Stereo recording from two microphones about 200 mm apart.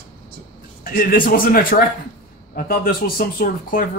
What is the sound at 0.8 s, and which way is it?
Speech, 45° left (ahead or behind).